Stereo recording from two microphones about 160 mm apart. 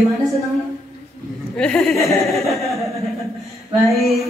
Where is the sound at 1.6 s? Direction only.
5° left (ahead or behind).